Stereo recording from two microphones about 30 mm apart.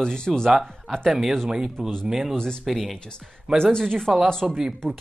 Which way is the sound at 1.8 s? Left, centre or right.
Right.